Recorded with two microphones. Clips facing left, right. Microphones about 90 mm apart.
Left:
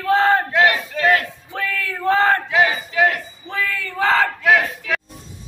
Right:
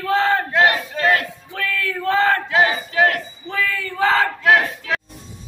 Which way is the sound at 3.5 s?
Centre (ahead or behind).